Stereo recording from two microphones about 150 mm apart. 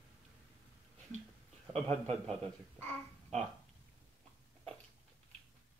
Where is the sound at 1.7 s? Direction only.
45° right (ahead or behind).